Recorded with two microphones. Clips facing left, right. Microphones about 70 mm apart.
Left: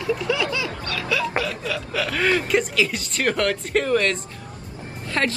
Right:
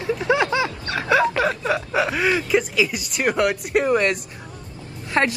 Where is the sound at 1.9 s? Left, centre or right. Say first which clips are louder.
Right 3 dB; right.